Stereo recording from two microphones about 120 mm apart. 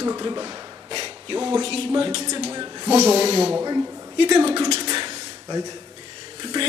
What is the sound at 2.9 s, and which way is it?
Speech, 60° right (ahead or behind).